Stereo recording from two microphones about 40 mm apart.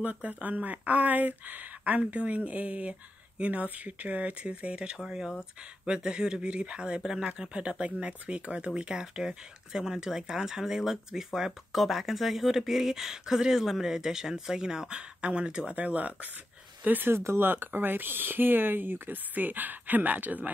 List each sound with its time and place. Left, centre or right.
0.0 s speech: right; by 11.5 s centre
11.7 s speech: centre; by 15.7 s right
15.7 s speech: right
16.8 s speech: right
17.1 s speech: right